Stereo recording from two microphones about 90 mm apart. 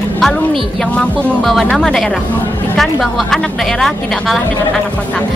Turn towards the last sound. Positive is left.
turn(degrees=0)  # may be behind; listen again after turning